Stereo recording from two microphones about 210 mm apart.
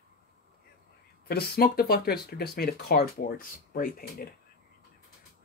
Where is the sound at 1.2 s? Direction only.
50° left (ahead or behind).